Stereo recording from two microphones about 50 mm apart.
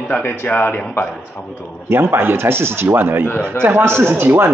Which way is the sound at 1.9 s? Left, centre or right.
Right.